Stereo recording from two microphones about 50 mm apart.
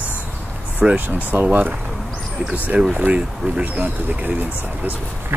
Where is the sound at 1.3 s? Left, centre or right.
Right.